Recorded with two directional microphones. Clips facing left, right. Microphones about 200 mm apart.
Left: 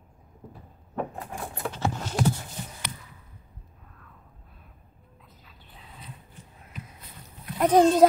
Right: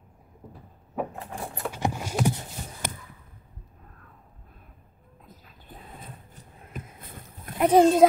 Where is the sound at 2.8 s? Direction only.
50° right (ahead or behind).